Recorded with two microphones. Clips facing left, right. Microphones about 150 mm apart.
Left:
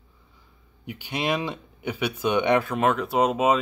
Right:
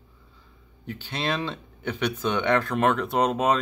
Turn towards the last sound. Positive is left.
turn(degrees=5)  # may be behind; listen again after turning